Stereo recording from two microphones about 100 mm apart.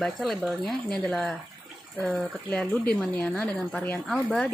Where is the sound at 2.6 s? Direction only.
10° left (ahead or behind).